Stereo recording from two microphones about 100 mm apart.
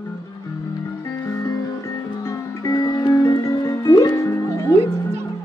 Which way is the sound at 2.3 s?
35° left (ahead or behind).